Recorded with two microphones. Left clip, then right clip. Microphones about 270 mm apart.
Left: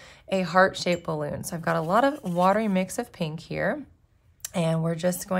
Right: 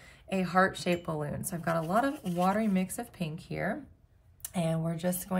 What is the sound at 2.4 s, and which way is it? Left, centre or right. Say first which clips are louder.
Speech: left 7 dB; centre.